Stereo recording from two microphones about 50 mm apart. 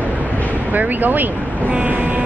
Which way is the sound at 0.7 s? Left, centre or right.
Right.